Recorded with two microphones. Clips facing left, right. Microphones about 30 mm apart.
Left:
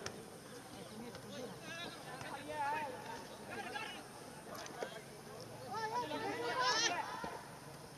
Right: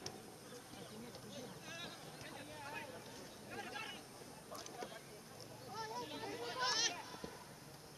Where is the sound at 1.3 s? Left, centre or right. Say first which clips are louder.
Left 4 dB; centre.